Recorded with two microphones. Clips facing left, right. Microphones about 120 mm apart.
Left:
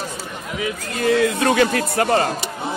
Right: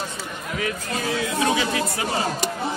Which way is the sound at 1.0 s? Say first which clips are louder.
Left 7 dB; 60° left (ahead or behind).